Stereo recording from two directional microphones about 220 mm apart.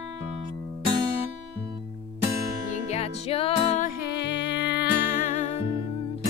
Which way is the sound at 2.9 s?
25° left (ahead or behind).